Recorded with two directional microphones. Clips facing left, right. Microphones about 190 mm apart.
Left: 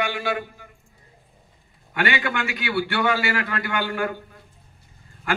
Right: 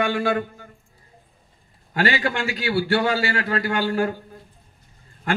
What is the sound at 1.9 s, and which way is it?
A man's voice, 30° right (ahead or behind).